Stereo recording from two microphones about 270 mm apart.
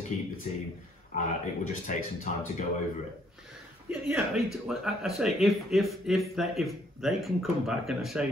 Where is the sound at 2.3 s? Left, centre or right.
Left.